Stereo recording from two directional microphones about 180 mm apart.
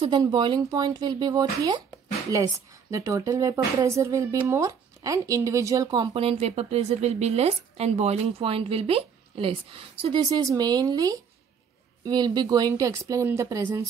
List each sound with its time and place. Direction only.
0.2 s a woman's voice: 25° right (ahead or behind)